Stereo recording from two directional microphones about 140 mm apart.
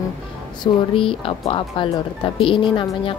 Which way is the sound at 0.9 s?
40° left (ahead or behind).